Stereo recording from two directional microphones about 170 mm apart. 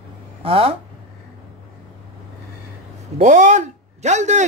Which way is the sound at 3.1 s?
45° right (ahead or behind).